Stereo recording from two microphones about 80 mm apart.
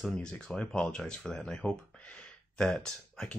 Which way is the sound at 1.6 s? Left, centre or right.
Centre.